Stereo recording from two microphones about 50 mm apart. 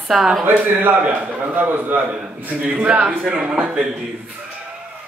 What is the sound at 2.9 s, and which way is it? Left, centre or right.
Speech, right.